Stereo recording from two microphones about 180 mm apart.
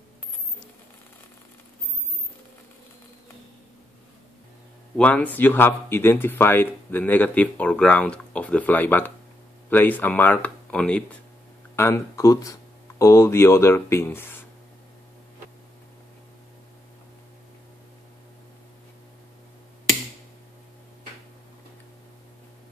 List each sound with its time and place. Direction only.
4.9 s speech: 10° left (ahead or behind)